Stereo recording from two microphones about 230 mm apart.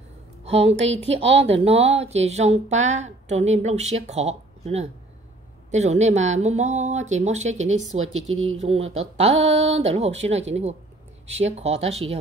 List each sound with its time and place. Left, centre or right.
0.5 s speech: right